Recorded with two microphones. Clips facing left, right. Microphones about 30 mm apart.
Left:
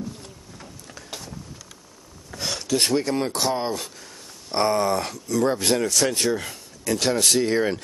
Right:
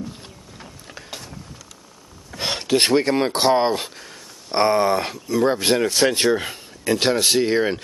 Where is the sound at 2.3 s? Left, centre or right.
Right.